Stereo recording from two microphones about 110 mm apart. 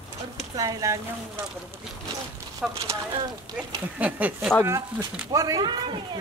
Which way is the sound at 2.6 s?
5° right (ahead or behind).